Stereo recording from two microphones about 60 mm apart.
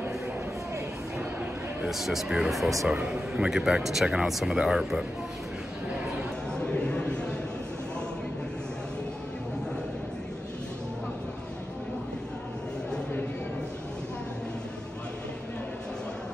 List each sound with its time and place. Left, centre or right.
1.9 s speech: centre
3.1 s a man's voice: centre
6.5 s a sound: centre